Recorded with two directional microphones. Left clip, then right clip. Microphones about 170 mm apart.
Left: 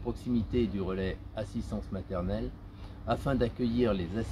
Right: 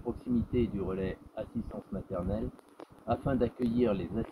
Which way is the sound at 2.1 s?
30° left (ahead or behind).